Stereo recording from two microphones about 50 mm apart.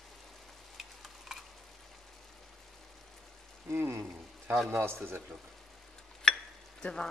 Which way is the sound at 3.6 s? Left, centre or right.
Right.